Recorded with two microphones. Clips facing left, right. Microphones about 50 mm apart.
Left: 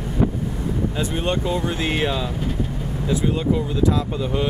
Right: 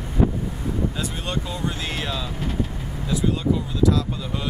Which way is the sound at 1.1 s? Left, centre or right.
Left.